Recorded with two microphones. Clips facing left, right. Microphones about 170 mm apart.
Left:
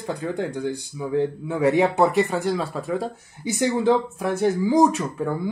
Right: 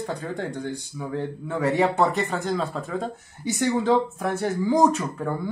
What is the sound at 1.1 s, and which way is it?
Speech, 15° left (ahead or behind).